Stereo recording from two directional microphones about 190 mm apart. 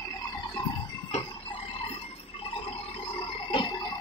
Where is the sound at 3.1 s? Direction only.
25° left (ahead or behind).